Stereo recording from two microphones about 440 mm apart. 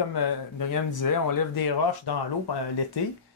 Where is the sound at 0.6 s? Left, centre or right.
Left.